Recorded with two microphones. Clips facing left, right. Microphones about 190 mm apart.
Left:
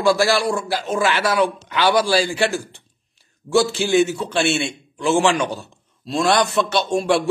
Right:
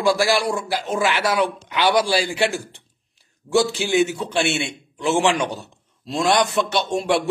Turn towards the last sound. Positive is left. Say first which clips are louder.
# left 2 dB
turn(degrees=-20)  # may be behind; listen again after turning